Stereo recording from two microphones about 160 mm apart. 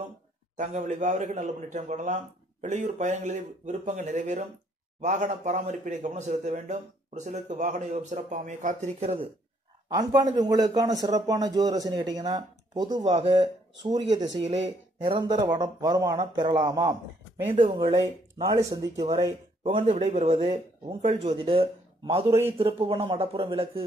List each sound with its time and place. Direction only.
0.6 s a man's voice: 45° right (ahead or behind)
9.8 s a man's voice: 25° right (ahead or behind)
19.6 s speech: 35° right (ahead or behind)